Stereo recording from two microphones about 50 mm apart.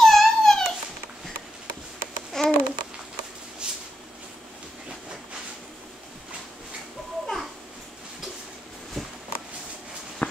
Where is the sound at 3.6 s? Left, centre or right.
Centre.